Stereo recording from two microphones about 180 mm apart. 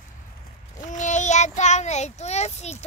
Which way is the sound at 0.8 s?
40° left (ahead or behind).